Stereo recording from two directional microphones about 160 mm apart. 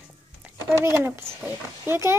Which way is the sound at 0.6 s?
15° right (ahead or behind).